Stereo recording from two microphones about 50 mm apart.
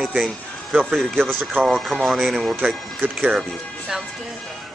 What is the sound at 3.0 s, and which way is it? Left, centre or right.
Speech, right.